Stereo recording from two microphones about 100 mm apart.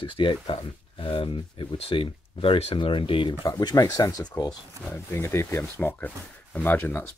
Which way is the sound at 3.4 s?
35° left (ahead or behind).